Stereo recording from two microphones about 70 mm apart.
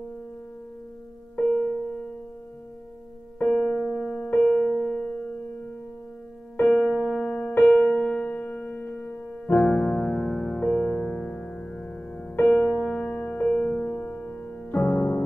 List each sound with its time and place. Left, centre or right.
3.4 s music: centre
4.2 s music: centre
6.6 s music: centre
7.3 s music: left
7.7 s music: centre